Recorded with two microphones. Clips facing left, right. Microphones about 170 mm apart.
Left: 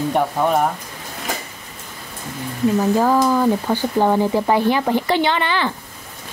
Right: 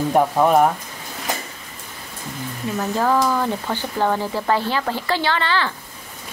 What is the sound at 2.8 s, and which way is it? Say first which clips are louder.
Speech: left 1 dB; 15° left (ahead or behind).